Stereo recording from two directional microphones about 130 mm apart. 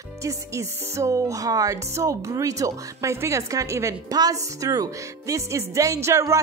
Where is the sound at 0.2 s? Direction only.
25° right (ahead or behind).